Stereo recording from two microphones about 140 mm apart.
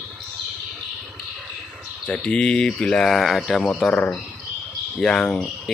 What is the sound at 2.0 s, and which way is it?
Speech, 10° left (ahead or behind).